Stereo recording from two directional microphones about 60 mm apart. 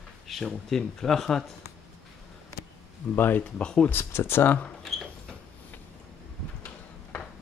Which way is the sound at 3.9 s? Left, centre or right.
Left.